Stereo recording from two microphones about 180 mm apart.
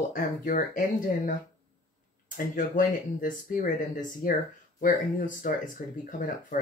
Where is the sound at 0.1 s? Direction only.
50° left (ahead or behind).